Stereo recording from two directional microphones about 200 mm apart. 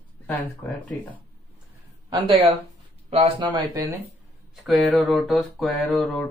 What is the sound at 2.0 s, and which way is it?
Speech, 20° right (ahead or behind).